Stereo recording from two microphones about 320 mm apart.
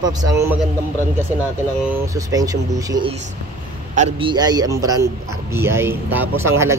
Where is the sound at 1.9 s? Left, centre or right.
Centre.